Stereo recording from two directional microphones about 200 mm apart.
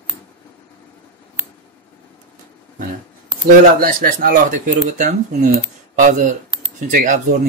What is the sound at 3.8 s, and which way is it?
Speech, 45° right (ahead or behind).